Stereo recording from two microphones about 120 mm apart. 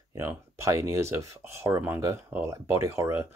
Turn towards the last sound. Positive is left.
turn(degrees=-20)  # may be behind; listen again after turning